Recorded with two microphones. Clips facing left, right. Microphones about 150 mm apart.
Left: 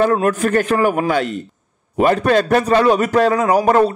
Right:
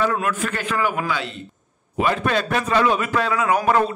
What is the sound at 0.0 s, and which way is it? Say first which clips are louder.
A man's voice: left 7 dB; 40° left (ahead or behind).